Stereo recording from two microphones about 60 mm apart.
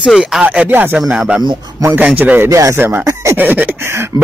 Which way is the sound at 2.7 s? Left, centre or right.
Right.